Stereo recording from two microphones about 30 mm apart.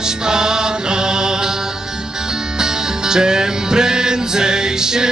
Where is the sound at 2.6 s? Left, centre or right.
Right.